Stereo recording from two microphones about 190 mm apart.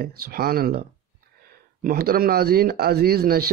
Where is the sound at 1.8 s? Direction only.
50° right (ahead or behind).